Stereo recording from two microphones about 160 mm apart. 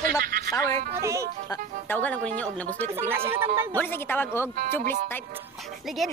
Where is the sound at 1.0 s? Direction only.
20° right (ahead or behind).